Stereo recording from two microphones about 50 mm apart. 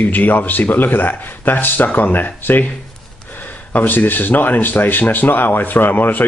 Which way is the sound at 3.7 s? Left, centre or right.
Left.